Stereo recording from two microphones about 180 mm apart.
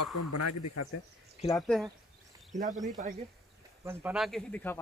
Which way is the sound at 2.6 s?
45° right (ahead or behind).